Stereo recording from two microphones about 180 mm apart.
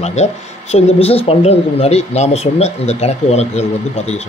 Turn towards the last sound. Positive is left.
turn(degrees=35)  # may be behind; listen again after turning